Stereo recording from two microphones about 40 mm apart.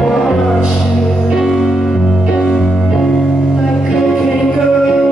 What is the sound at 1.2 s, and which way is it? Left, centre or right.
Music, centre.